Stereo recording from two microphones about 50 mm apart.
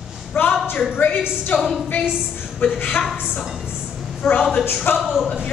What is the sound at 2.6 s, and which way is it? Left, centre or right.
Speech, left.